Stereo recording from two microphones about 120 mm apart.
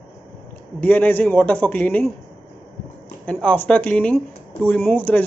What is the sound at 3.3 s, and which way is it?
A man's voice, 15° left (ahead or behind).